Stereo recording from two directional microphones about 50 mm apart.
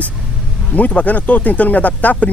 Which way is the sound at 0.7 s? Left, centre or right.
Left.